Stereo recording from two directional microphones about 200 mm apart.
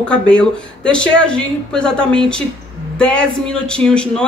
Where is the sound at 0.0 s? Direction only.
5° left (ahead or behind).